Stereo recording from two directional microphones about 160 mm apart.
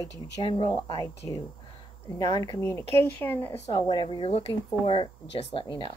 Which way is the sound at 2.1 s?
20° left (ahead or behind).